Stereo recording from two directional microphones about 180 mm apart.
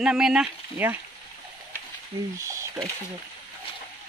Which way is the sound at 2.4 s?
15° right (ahead or behind).